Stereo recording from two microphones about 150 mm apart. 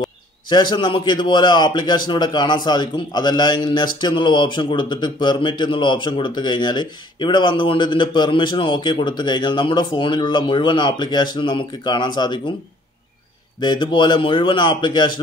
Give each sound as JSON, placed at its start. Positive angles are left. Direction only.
{"t": 0.5, "sound": "a man's voice", "side_deg": 30}
{"t": 13.6, "sound": "a man's voice", "side_deg": 30}